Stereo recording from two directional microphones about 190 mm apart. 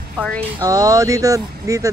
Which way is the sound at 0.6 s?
20° right (ahead or behind).